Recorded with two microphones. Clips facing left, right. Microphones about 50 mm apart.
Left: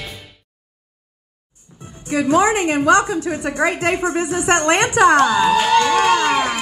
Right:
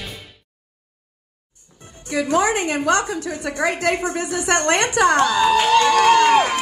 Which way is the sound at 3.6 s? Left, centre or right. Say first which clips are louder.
Left 1 dB; left.